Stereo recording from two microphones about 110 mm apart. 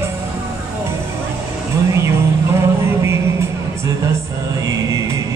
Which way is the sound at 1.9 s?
25° right (ahead or behind).